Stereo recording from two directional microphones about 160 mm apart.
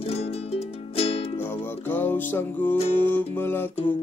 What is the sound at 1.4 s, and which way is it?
Music, 15° left (ahead or behind).